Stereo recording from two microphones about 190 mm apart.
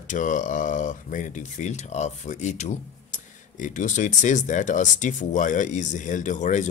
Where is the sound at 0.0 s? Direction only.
40° left (ahead or behind).